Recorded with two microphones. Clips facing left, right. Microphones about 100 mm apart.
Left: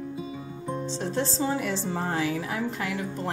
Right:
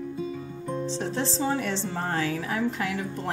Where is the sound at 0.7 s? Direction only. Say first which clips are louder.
Right 1 dB; centre (ahead or behind).